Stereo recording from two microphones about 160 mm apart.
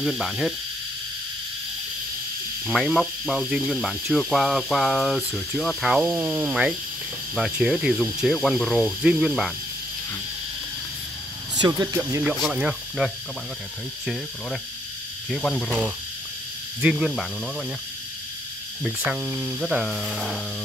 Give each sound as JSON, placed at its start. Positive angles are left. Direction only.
{"t": 0.0, "sound": "speech", "side_deg": 0}
{"t": 2.6, "sound": "speech", "side_deg": 0}
{"t": 11.5, "sound": "speech", "side_deg": -25}
{"t": 12.2, "sound": "speech", "side_deg": 0}
{"t": 15.2, "sound": "speech", "side_deg": 5}
{"t": 16.8, "sound": "speech", "side_deg": 0}
{"t": 18.8, "sound": "speech", "side_deg": 0}